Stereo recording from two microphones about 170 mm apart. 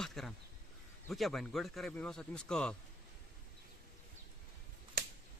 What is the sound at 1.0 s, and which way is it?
Speech, centre (ahead or behind).